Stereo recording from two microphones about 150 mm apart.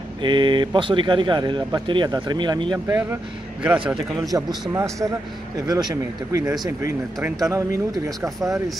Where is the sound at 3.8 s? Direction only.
Centre (ahead or behind).